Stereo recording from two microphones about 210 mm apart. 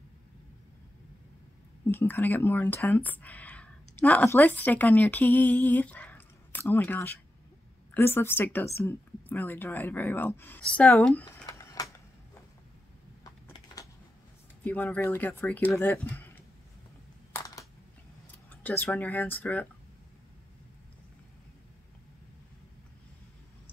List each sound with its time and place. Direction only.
1.9 s a woman's voice: 10° left (ahead or behind)
13.2 s a sound: 15° left (ahead or behind)
14.6 s a woman's voice: 10° left (ahead or behind)
18.5 s a woman's voice: 10° left (ahead or behind)